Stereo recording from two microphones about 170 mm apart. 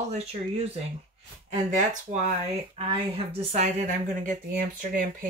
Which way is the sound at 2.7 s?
35° right (ahead or behind).